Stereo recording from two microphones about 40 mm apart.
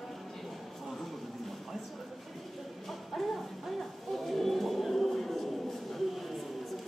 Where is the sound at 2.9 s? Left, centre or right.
Centre.